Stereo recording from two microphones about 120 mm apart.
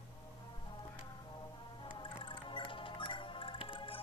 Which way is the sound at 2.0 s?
45° left (ahead or behind).